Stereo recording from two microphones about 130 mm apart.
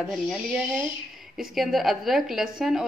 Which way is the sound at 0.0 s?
Centre (ahead or behind).